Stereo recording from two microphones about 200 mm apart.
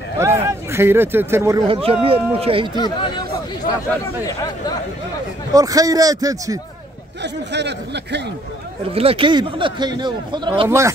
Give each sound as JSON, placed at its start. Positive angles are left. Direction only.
{"t": 0.2, "sound": "speech", "side_deg": -15}
{"t": 1.7, "sound": "a man's voice", "side_deg": -30}
{"t": 4.3, "sound": "speech", "side_deg": 20}
{"t": 5.5, "sound": "a man's voice", "side_deg": -15}
{"t": 7.5, "sound": "speech", "side_deg": -60}
{"t": 8.9, "sound": "a man's voice", "side_deg": -30}